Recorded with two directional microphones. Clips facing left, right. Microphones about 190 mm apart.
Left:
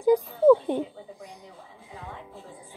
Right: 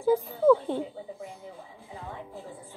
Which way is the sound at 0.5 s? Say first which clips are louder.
Left 3 dB; 15° left (ahead or behind).